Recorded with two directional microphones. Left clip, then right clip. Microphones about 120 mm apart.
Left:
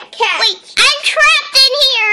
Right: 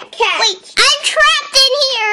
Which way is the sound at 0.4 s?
35° right (ahead or behind).